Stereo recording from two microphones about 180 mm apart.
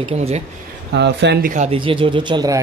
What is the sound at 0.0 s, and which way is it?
Speech, 35° right (ahead or behind).